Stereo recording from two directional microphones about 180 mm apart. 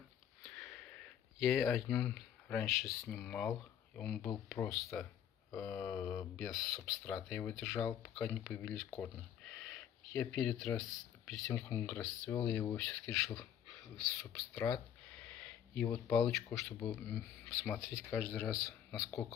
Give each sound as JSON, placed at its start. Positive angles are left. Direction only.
{"t": 0.4, "sound": "a sound", "side_deg": 0}
{"t": 4.6, "sound": "speech", "side_deg": 20}
{"t": 4.9, "sound": "speech", "side_deg": 10}
{"t": 6.3, "sound": "speech", "side_deg": 0}
{"t": 7.7, "sound": "speech", "side_deg": 10}
{"t": 8.1, "sound": "speech", "side_deg": 0}
{"t": 9.0, "sound": "a sound", "side_deg": 5}
{"t": 10.8, "sound": "speech", "side_deg": 0}